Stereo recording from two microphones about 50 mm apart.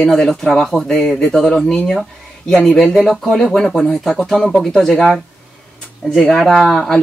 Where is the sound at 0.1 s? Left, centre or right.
Centre.